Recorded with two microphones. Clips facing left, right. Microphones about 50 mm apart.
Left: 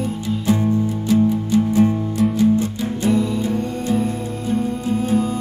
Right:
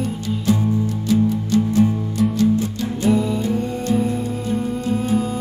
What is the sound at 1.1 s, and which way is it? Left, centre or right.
Music, centre.